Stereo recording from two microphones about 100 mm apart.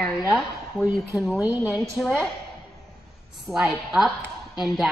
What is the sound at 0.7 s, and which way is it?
A woman's voice, 5° right (ahead or behind).